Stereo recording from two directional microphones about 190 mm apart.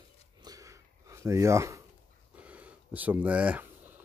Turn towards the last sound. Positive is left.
turn(degrees=-10)  # may be behind; listen again after turning